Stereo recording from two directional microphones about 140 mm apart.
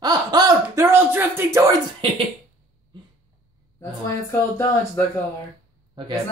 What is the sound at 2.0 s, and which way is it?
Speech, 40° right (ahead or behind).